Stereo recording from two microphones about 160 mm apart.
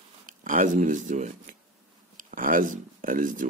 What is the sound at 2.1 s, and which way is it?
Speech, 60° right (ahead or behind).